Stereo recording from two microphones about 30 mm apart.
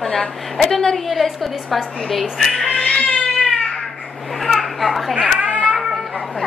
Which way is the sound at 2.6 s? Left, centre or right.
Left.